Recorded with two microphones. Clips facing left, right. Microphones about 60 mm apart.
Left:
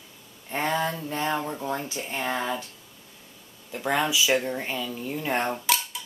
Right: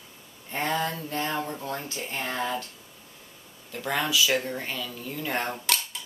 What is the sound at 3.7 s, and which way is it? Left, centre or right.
Speech, centre.